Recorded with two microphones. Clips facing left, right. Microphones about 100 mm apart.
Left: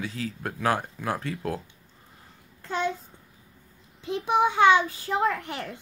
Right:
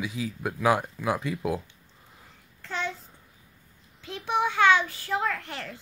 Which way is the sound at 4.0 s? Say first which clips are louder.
Left 4 dB; 15° left (ahead or behind).